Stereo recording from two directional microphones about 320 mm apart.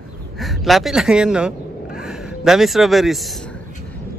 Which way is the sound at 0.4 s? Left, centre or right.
Centre.